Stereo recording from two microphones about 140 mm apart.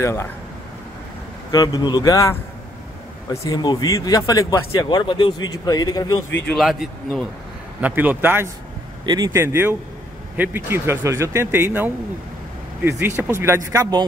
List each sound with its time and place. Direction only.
0.0 s speech: 20° left (ahead or behind)
1.5 s speech: 25° left (ahead or behind)
3.4 s speech: 30° left (ahead or behind)
6.5 s speech: centre (ahead or behind)
7.8 s speech: 10° right (ahead or behind)
9.0 s speech: 30° right (ahead or behind)